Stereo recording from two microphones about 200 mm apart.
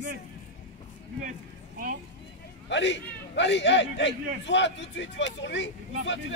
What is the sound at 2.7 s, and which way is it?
A man's voice, 65° left (ahead or behind).